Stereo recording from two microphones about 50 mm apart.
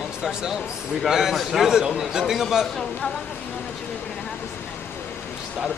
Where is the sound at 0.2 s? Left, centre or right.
Centre.